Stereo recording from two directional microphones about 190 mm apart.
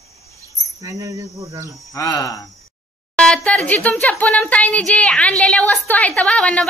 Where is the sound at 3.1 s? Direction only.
5° left (ahead or behind).